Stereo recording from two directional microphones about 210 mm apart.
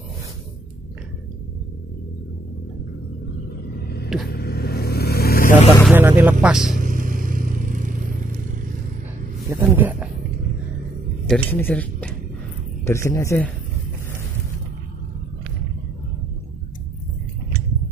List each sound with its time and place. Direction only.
3.8 s vehicle: 50° left (ahead or behind)
5.9 s speech: 10° right (ahead or behind)
6.8 s vehicle: 40° right (ahead or behind)
9.5 s a sound: 10° right (ahead or behind)
11.2 s speech: 5° left (ahead or behind)